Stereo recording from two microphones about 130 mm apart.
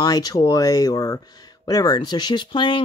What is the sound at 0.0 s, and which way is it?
Speech, 30° left (ahead or behind).